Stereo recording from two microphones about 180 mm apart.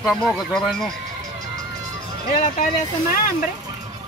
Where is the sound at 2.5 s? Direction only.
50° left (ahead or behind).